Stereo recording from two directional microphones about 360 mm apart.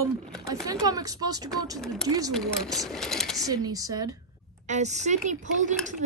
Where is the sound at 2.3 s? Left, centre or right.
Centre.